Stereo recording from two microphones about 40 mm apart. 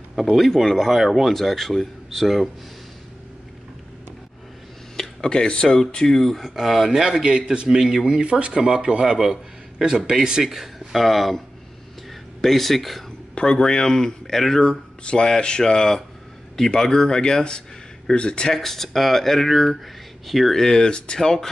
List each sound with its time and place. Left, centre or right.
0.2 s speech: centre
4.9 s a sound: centre
5.9 s speech: centre
6.5 s a man's voice: centre
8.1 s a man's voice: right
10.4 s speech: centre
13.3 s speech: centre
14.6 s speech: centre
18.5 s speech: centre
20.5 s speech: centre